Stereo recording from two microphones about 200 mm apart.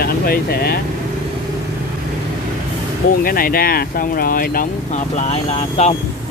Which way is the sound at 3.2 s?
45° left (ahead or behind).